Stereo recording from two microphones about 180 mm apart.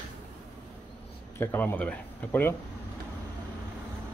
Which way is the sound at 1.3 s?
10° left (ahead or behind).